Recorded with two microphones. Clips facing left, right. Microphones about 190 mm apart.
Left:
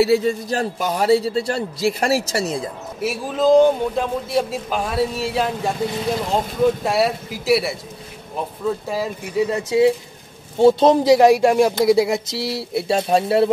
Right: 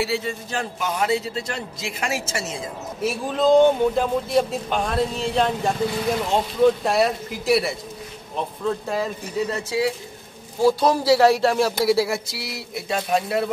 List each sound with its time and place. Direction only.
0.0 s a man's voice: 40° left (ahead or behind)
3.0 s speech: 5° left (ahead or behind); by 13.5 s 30° left (ahead or behind)